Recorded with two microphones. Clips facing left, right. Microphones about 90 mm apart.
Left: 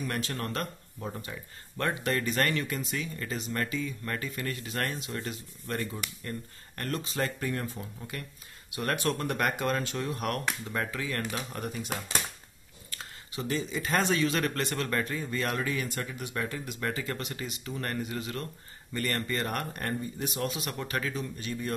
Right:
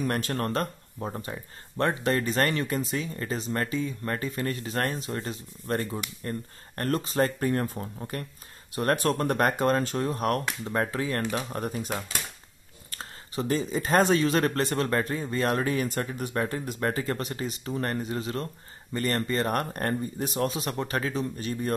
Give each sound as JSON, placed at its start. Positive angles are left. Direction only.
{"t": 0.0, "sound": "speech", "side_deg": -45}
{"t": 12.9, "sound": "speech", "side_deg": -40}
{"t": 19.5, "sound": "speech", "side_deg": -45}